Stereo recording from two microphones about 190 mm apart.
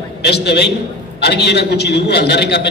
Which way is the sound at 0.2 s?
60° left (ahead or behind).